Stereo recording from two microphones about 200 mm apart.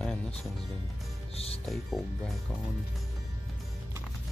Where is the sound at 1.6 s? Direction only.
Centre (ahead or behind).